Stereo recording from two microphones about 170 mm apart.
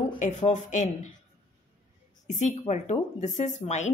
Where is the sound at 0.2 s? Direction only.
45° left (ahead or behind).